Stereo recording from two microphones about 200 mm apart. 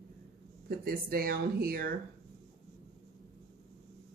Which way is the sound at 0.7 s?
50° right (ahead or behind).